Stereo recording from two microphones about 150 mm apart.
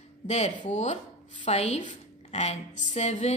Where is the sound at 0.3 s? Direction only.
50° left (ahead or behind).